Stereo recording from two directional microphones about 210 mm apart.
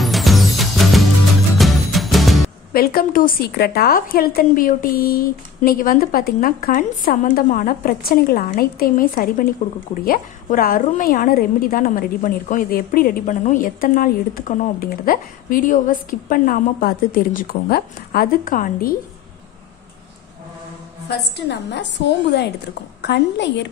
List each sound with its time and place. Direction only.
0.0 s music: centre (ahead or behind)
2.7 s a woman's voice: 45° left (ahead or behind)
21.1 s a woman's voice: 55° left (ahead or behind)